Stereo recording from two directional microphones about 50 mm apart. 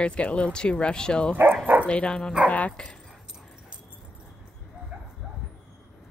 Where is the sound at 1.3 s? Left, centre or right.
Right.